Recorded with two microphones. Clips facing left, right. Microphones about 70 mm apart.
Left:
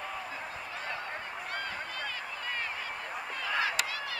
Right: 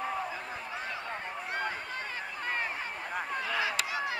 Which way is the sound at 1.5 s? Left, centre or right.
Right.